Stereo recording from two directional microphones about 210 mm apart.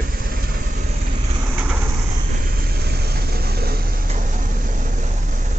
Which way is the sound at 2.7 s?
50° right (ahead or behind).